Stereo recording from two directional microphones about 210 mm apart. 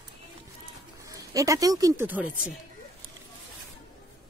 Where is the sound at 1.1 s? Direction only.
15° right (ahead or behind).